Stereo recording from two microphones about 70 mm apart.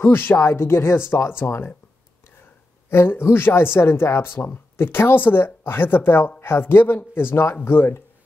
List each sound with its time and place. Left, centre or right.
0.0 s speech: left
2.9 s speech: left